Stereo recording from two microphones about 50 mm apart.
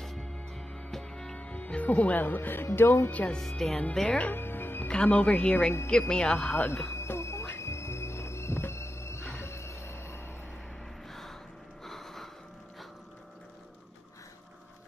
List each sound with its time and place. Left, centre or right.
0.0 s music: centre
1.4 s speech: left
3.3 s speech: centre
4.3 s music: left
4.8 s speech: left
6.5 s music: left
11.1 s music: centre
11.8 s a sound: centre